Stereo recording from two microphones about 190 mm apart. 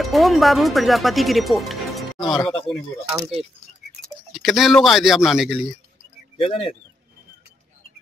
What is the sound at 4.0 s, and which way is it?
Speech, centre (ahead or behind).